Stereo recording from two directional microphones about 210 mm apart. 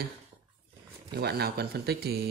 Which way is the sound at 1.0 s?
50° right (ahead or behind).